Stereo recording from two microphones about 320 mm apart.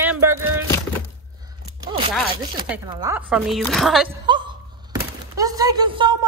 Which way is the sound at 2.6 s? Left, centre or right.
Centre.